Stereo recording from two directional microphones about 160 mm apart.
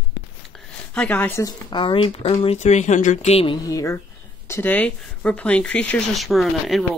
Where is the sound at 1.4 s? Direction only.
30° left (ahead or behind).